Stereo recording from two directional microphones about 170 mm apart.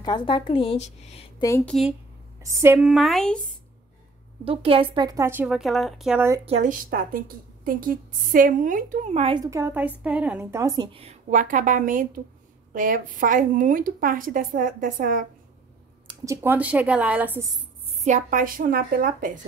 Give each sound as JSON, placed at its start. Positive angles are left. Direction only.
{"t": 0.0, "sound": "a woman's voice", "side_deg": 25}
{"t": 1.7, "sound": "speech", "side_deg": 0}
{"t": 2.4, "sound": "a woman's voice", "side_deg": -15}
{"t": 2.9, "sound": "speech", "side_deg": 0}
{"t": 4.5, "sound": "a woman's voice", "side_deg": -35}
{"t": 6.4, "sound": "a woman's voice", "side_deg": -45}
{"t": 9.4, "sound": "a woman's voice", "side_deg": -15}
{"t": 11.2, "sound": "a woman's voice", "side_deg": -50}
{"t": 16.1, "sound": "a sound", "side_deg": -25}
{"t": 16.4, "sound": "a woman's voice", "side_deg": -10}
{"t": 17.5, "sound": "music", "side_deg": -25}
{"t": 17.9, "sound": "a woman's voice", "side_deg": -45}